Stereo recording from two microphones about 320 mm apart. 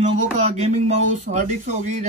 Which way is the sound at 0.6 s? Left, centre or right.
Right.